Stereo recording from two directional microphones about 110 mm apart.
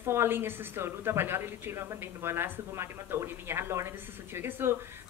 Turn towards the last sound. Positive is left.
turn(degrees=-20)  # may be behind; listen again after turning